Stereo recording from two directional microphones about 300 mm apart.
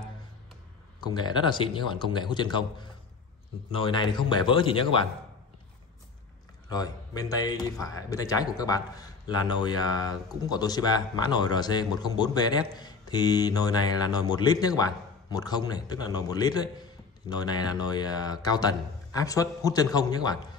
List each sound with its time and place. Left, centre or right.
1.0 s speech: centre
6.7 s speech: centre